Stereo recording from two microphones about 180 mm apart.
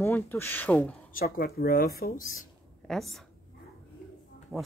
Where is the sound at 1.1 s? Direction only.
55° left (ahead or behind).